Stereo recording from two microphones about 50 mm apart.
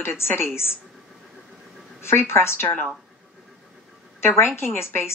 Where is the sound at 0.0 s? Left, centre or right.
Left.